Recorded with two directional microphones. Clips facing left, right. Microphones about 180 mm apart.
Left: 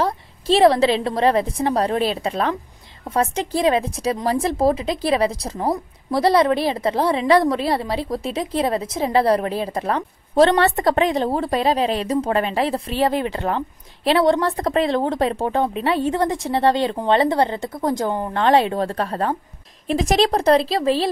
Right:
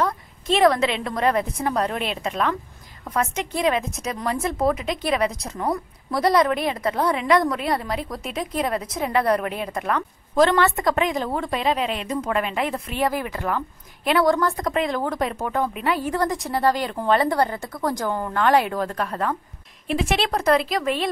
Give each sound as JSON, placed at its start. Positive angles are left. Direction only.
{"t": 0.0, "sound": "a woman's voice", "side_deg": 30}